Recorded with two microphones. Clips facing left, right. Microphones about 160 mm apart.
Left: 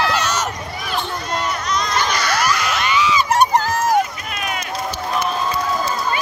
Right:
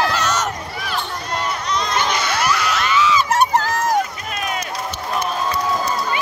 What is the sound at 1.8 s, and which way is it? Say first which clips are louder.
Crowd: right 1 dB; 25° right (ahead or behind).